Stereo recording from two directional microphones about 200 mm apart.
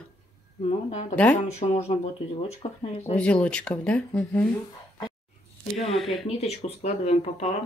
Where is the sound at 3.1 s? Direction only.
5° left (ahead or behind).